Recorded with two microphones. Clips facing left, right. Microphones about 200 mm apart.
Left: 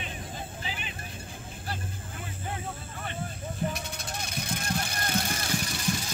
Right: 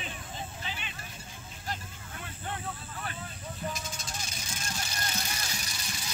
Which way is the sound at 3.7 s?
60° left (ahead or behind).